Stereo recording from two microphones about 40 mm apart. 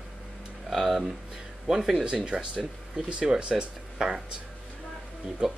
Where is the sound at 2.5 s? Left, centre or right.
Right.